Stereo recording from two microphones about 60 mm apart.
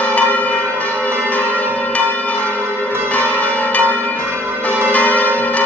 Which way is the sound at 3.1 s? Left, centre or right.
Left.